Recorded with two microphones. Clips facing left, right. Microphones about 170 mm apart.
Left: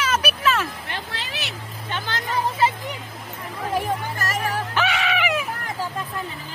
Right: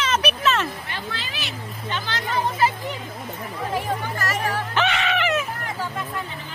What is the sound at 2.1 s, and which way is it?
Speech, 50° left (ahead or behind).